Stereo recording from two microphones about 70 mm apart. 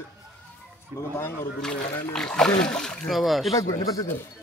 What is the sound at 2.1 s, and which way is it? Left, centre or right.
Speech, centre.